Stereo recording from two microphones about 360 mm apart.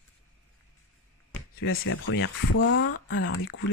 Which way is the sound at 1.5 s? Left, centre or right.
Left.